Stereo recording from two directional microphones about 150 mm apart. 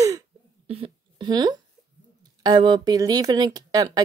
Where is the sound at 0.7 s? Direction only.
40° right (ahead or behind).